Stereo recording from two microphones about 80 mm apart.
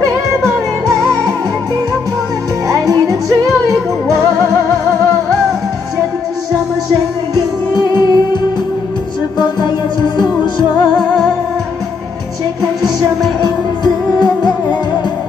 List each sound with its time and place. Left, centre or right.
2.7 s music: right
7.7 s music: left
9.4 s music: left
13.8 s music: left